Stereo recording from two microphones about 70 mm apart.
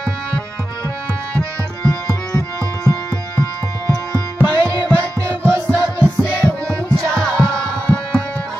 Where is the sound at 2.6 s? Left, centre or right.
Left.